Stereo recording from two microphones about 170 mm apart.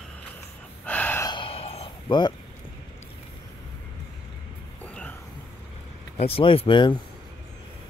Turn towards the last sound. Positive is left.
turn(degrees=30)  # may be behind; listen again after turning